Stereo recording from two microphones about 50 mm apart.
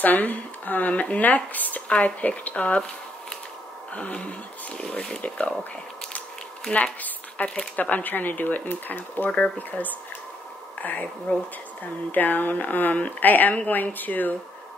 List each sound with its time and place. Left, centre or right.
0.0 s a woman's voice: left
3.9 s a sound: left
6.7 s a woman's voice: left